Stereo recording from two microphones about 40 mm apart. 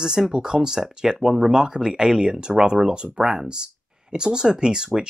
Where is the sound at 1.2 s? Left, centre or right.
Centre.